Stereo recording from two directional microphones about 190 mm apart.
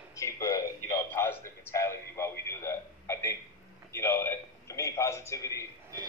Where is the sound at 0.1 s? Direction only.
15° left (ahead or behind).